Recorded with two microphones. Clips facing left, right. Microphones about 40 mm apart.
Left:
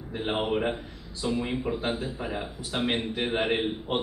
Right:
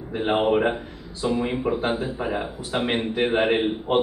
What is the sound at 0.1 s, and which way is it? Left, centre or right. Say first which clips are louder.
Speech: right 7 dB; centre.